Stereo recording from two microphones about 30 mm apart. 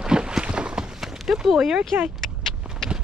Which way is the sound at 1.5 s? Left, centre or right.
Centre.